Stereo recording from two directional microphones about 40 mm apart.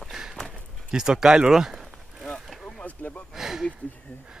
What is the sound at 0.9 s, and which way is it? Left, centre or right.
Speech, centre.